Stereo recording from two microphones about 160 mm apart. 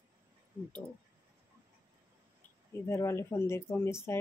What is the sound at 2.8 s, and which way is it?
Speech, 15° left (ahead or behind).